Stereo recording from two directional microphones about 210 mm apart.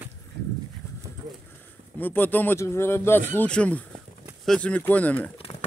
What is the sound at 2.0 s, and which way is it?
Speech, 10° left (ahead or behind).